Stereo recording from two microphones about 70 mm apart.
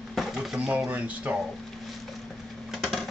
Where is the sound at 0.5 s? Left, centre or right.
Centre.